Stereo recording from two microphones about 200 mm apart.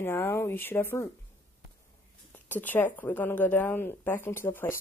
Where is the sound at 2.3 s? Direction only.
10° left (ahead or behind).